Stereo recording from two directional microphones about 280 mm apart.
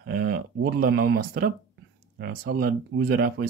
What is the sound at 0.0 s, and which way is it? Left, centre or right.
Speech, right.